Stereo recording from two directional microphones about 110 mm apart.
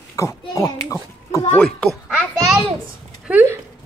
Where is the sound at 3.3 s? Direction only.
10° right (ahead or behind).